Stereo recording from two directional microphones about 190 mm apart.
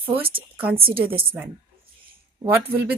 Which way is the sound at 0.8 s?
30° right (ahead or behind).